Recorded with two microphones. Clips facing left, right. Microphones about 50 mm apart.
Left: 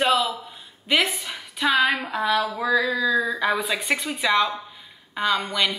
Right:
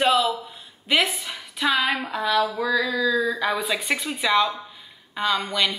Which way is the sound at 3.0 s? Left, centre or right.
Left.